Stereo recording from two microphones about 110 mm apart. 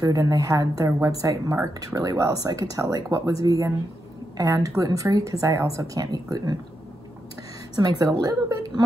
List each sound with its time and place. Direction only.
0.0 s speech: 30° right (ahead or behind)
8.0 s speech: 30° right (ahead or behind)